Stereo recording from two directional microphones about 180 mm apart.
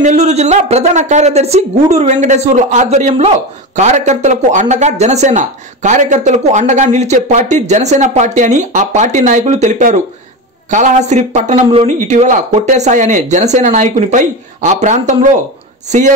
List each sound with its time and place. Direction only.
0.0 s speech: 40° right (ahead or behind)